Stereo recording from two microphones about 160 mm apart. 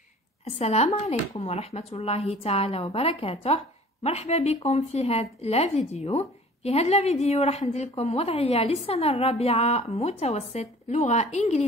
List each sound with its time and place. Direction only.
0.6 s speech: 40° left (ahead or behind)